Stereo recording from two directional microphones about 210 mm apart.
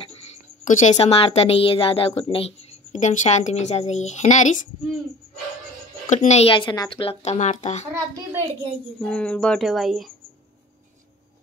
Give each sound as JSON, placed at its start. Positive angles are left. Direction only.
{"t": 0.7, "sound": "a woman's voice", "side_deg": 35}
{"t": 6.0, "sound": "a woman's voice", "side_deg": 30}
{"t": 9.0, "sound": "speech", "side_deg": 5}